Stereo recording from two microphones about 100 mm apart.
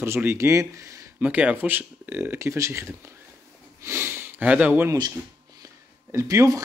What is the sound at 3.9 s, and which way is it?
Sniff, 25° right (ahead or behind).